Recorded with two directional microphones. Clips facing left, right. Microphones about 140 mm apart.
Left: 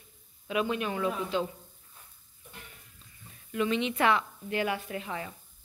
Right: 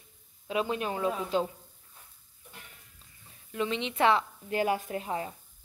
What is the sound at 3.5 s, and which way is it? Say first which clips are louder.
A woman's voice: left 3 dB; 25° right (ahead or behind).